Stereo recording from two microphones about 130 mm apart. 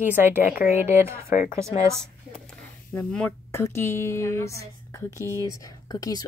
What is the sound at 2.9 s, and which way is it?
A woman's voice, 10° left (ahead or behind).